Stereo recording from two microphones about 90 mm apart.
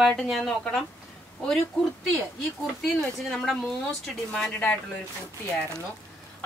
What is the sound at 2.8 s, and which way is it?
A woman's voice, centre (ahead or behind).